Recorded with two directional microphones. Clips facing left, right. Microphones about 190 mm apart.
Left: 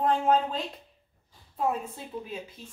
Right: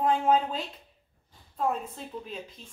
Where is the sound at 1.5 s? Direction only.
5° left (ahead or behind).